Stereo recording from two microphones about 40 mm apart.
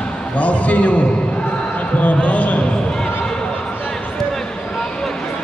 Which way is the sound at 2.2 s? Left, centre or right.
Left.